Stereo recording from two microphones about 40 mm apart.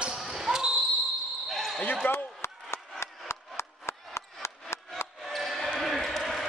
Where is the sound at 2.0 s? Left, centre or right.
Left.